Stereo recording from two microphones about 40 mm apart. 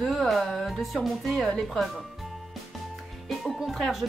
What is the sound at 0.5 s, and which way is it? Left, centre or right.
Speech, centre.